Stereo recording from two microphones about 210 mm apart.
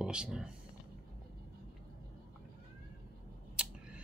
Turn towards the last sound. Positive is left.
turn(degrees=-5)  # may be behind; listen again after turning